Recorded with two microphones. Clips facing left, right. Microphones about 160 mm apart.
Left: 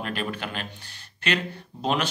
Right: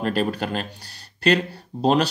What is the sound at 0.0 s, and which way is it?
Speech, 40° right (ahead or behind).